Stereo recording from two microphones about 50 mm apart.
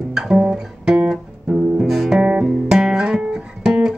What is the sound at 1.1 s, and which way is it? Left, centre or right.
Music, centre.